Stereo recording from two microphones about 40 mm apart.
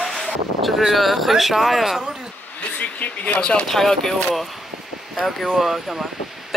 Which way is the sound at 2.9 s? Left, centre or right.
Left.